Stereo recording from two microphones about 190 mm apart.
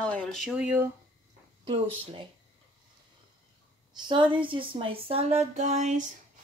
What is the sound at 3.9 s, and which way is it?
Speech, 25° right (ahead or behind).